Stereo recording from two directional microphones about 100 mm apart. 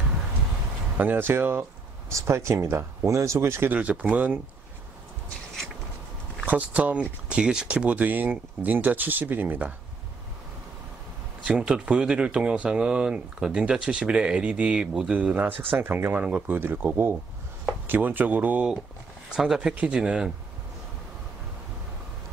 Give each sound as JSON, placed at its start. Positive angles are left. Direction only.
{"t": 0.9, "sound": "speech", "side_deg": -20}
{"t": 3.7, "sound": "speech", "side_deg": -15}
{"t": 6.4, "sound": "speech", "side_deg": -15}
{"t": 11.4, "sound": "speech", "side_deg": -10}
{"t": 19.3, "sound": "speech", "side_deg": -5}